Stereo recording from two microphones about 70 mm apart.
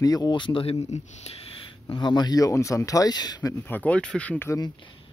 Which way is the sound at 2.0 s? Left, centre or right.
Left.